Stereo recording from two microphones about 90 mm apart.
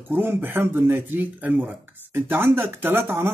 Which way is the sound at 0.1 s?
20° right (ahead or behind).